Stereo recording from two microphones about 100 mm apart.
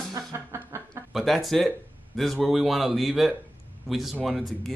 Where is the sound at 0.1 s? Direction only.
30° right (ahead or behind).